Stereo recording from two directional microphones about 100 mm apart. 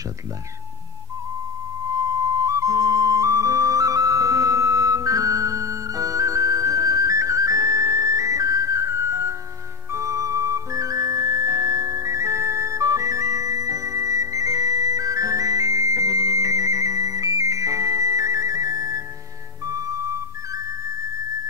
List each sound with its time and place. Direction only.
2.4 s flute: 35° right (ahead or behind)
9.9 s music: 30° right (ahead or behind)